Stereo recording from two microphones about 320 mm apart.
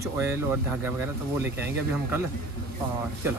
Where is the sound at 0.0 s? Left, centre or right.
Centre.